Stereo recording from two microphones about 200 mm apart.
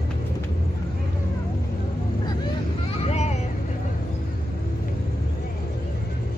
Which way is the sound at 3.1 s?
35° left (ahead or behind).